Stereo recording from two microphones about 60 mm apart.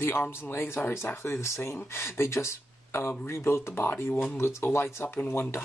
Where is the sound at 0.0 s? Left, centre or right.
Left.